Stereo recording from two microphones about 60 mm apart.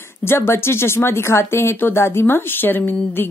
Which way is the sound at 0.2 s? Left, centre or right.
Left.